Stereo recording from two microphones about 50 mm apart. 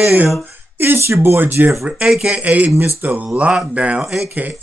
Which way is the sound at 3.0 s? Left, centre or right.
Right.